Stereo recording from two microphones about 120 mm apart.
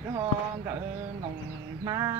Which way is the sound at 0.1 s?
25° right (ahead or behind).